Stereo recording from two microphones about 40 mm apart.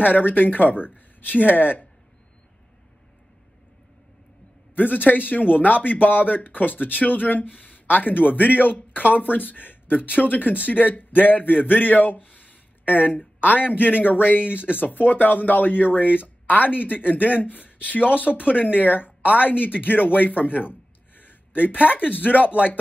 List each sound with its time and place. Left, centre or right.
0.0 s a man's voice: left
4.7 s a man's voice: left